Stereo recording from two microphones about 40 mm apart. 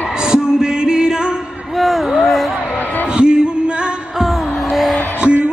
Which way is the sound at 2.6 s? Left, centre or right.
Left.